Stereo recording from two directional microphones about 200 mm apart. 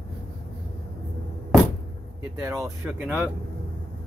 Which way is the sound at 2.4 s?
15° right (ahead or behind).